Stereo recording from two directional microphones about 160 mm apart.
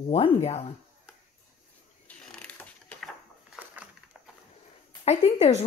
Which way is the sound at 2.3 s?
5° left (ahead or behind).